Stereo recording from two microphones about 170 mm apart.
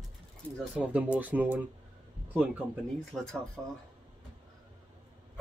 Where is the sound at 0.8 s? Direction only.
5° right (ahead or behind).